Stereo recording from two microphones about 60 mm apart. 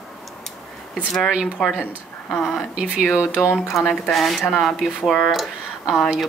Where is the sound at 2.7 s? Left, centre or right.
Centre.